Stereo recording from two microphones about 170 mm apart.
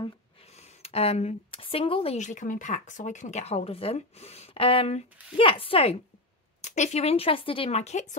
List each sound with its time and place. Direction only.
0.6 s speech: 35° left (ahead or behind)
6.6 s speech: 45° left (ahead or behind)